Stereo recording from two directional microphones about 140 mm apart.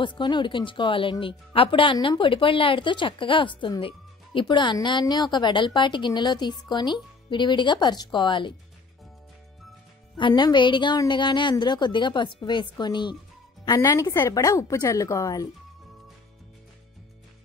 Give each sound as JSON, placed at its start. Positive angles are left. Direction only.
{"t": 0.0, "sound": "speech", "side_deg": 35}
{"t": 10.1, "sound": "a woman's voice", "side_deg": 35}